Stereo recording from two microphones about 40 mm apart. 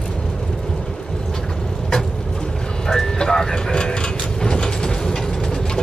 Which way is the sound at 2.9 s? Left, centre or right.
Centre.